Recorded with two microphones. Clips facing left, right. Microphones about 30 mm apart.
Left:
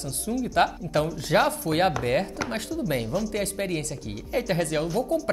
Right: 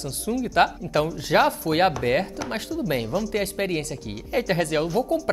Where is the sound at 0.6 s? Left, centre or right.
Right.